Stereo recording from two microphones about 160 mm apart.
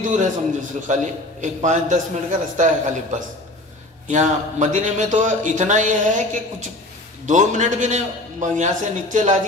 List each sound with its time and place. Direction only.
0.0 s speech: 55° right (ahead or behind)